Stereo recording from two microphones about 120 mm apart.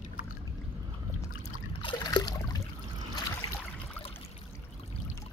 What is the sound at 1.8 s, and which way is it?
Trickle, 40° left (ahead or behind).